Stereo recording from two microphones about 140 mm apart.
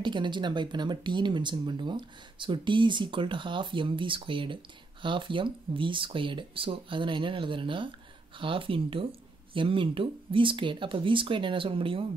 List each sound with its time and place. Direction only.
0.0 s speech: 35° right (ahead or behind)